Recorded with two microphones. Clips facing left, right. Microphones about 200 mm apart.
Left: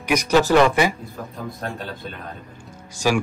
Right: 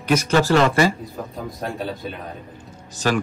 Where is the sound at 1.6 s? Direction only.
Centre (ahead or behind).